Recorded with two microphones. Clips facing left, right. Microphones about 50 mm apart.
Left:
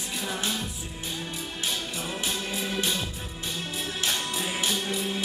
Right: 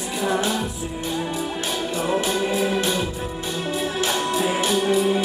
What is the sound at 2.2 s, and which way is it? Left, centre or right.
Organ, centre.